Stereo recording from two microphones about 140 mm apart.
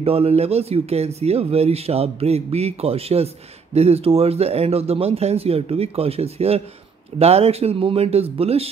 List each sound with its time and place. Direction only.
0.0 s speech: 45° right (ahead or behind)